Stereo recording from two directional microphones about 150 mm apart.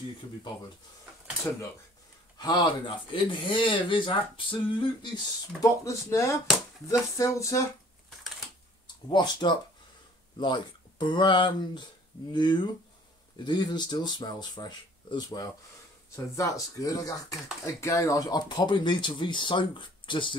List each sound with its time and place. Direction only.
2.3 s speech: 30° left (ahead or behind)
5.6 s speech: 20° left (ahead or behind)
8.8 s speech: 30° left (ahead or behind)